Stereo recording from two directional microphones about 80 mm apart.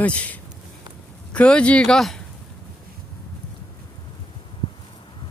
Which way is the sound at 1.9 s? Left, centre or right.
Centre.